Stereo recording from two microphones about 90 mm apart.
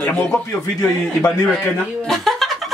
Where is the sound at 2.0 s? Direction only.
Centre (ahead or behind).